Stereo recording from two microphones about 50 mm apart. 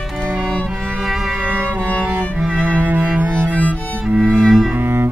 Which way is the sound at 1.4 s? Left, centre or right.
Right.